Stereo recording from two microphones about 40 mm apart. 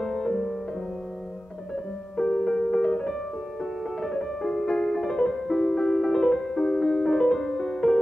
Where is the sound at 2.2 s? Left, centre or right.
Centre.